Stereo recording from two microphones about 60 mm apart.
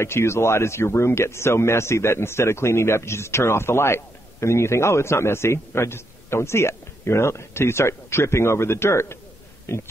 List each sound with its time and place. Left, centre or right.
0.0 s speech: left